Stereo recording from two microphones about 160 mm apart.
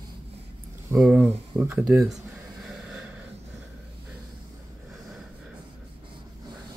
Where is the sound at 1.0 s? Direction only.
10° right (ahead or behind).